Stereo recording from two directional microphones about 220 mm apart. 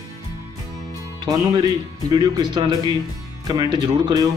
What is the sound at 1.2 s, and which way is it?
Speech, 20° right (ahead or behind).